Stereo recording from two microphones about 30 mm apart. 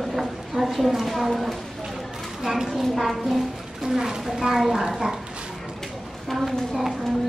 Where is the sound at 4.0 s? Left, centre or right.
Centre.